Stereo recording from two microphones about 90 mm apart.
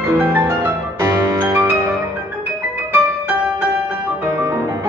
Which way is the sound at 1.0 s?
30° right (ahead or behind).